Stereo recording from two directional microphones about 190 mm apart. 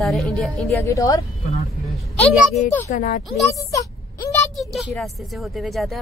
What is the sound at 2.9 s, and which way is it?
Speech, 45° left (ahead or behind).